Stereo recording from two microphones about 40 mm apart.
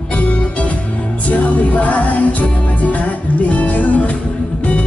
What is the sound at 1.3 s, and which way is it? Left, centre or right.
Music, left.